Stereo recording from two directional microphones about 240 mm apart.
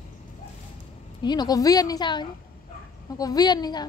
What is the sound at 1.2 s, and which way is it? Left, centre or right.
A woman's voice, centre.